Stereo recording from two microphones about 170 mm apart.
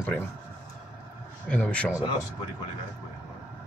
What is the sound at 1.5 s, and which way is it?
Speech, 5° left (ahead or behind).